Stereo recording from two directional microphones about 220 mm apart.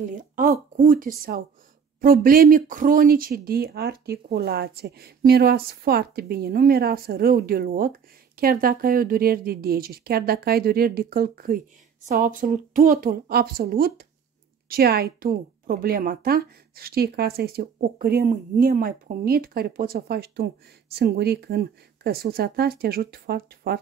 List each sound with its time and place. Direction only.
0.0 s a woman's voice: 35° right (ahead or behind)